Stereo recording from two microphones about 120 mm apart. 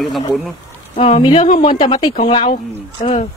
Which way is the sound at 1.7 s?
40° left (ahead or behind).